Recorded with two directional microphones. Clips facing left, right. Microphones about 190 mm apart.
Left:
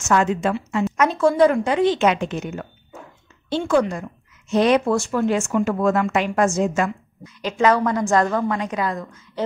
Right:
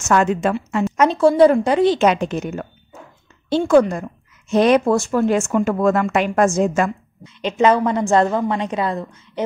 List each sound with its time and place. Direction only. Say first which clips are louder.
0.1 s a woman's voice: right 2 dB; 55° right (ahead or behind)
0.9 s a woman's voice: right 4 dB; 30° right (ahead or behind); by 6.9 s 50° right (ahead or behind)
7.2 s a woman's voice: right 3 dB; 20° right (ahead or behind)